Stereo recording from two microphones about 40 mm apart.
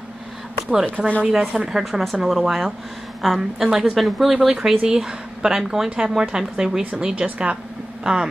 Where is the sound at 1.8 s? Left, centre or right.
Centre.